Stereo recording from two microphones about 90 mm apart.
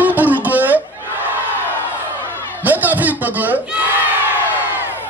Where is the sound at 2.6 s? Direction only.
20° right (ahead or behind).